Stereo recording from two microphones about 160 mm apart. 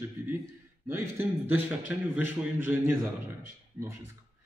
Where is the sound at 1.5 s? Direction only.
10° right (ahead or behind).